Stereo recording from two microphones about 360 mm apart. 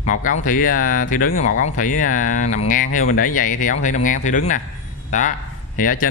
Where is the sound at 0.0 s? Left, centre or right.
Left.